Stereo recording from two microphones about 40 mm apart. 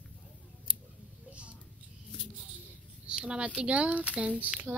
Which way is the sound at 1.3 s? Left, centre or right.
Right.